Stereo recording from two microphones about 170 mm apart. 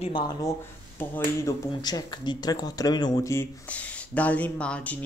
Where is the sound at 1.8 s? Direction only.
25° left (ahead or behind); by 4.9 s 5° left (ahead or behind).